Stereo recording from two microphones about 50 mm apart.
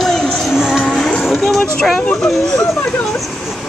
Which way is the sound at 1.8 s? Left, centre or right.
Centre.